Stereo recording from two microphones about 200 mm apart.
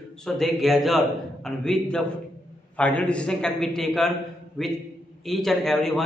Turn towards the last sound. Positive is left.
turn(degrees=0)  # may be behind; listen again after turning